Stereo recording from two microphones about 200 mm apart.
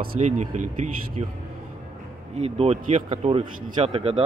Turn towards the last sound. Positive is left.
turn(degrees=-30)  # may be behind; listen again after turning